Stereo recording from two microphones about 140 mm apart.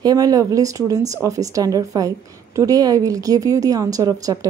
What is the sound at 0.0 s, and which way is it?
Speech, 25° right (ahead or behind).